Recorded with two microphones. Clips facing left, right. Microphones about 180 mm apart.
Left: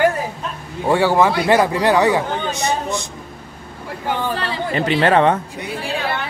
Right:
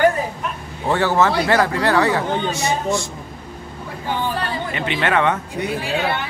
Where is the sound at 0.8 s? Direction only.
10° left (ahead or behind).